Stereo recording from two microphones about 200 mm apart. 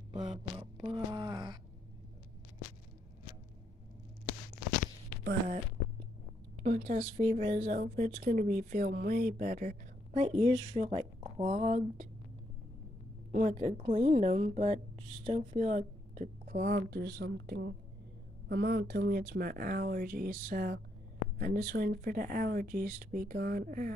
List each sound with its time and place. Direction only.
0.6 s a sound: 20° right (ahead or behind)
6.6 s speech: 45° right (ahead or behind)
7.2 s speech: 30° right (ahead or behind)
13.3 s a woman's voice: 40° right (ahead or behind)